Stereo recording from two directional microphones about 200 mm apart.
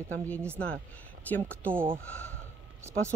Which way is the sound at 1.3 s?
5° left (ahead or behind).